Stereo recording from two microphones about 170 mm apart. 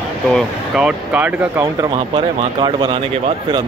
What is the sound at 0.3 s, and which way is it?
Speech, 5° right (ahead or behind).